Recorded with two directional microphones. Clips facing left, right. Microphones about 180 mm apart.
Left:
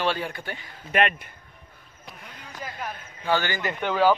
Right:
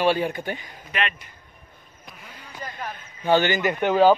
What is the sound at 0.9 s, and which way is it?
Speech, 50° left (ahead or behind).